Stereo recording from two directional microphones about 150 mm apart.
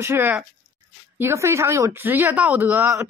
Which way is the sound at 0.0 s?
15° right (ahead or behind).